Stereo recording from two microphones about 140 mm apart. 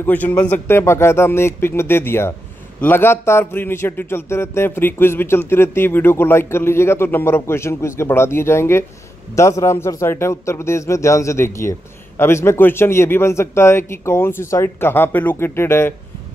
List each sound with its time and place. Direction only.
0.0 s a man's voice: 15° left (ahead or behind)